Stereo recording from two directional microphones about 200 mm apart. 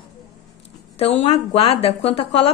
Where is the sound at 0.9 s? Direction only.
30° left (ahead or behind).